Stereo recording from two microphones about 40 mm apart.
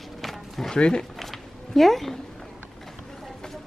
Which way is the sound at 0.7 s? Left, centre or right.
Left.